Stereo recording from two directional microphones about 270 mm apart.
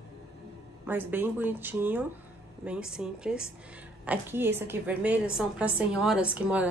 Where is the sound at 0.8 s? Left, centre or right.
Centre.